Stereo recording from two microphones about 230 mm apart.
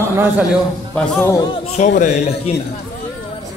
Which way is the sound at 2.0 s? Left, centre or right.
Left.